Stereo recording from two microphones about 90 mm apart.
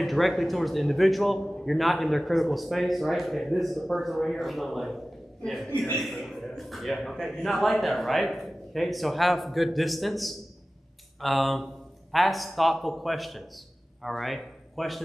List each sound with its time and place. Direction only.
0.0 s a man's voice: centre (ahead or behind)